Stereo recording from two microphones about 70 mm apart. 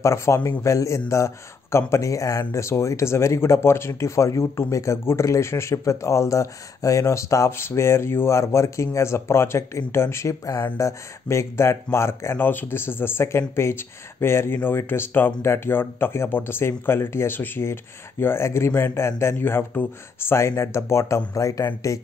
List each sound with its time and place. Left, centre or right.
0.0 s speech: left
10.4 s speech: left
19.3 s speech: left
21.3 s speech: left